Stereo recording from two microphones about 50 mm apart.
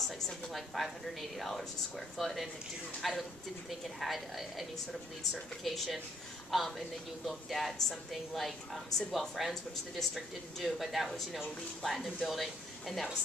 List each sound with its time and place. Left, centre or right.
0.1 s a woman's voice: centre